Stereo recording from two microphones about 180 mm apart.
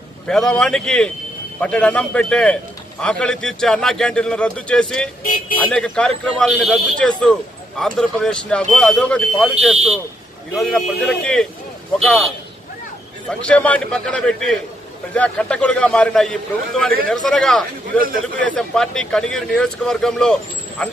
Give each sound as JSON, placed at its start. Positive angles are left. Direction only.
{"t": 0.3, "sound": "a man's voice", "side_deg": 5}
{"t": 5.2, "sound": "speech", "side_deg": 50}
{"t": 5.7, "sound": "a man's voice", "side_deg": 5}
{"t": 10.6, "sound": "a man's voice", "side_deg": 5}
{"t": 13.3, "sound": "a man's voice", "side_deg": 5}